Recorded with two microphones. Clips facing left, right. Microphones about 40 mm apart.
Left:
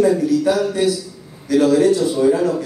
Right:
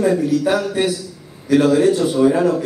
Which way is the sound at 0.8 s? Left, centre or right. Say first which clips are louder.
Left 1 dB; right.